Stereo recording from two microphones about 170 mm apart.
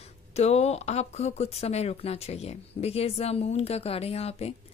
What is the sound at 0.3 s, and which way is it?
A woman's voice, 40° left (ahead or behind).